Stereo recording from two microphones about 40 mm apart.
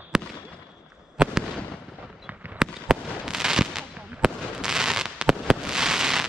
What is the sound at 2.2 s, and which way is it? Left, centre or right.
Fireworks, right.